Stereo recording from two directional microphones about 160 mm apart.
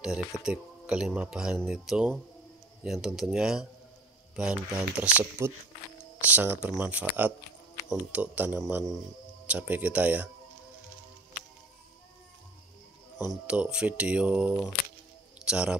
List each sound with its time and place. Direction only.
0.0 s speech: 5° right (ahead or behind)
13.3 s speech: 5° right (ahead or behind)
15.4 s a sound: 5° right (ahead or behind)